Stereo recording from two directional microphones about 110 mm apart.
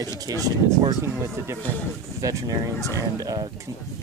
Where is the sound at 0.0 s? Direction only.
35° right (ahead or behind).